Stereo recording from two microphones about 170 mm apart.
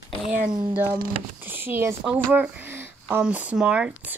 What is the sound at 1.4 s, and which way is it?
Speech, 10° right (ahead or behind).